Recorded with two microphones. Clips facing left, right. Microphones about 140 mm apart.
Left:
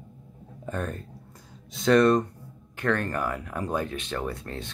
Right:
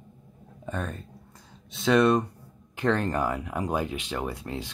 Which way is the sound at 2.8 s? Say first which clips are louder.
Right 2 dB; 20° right (ahead or behind).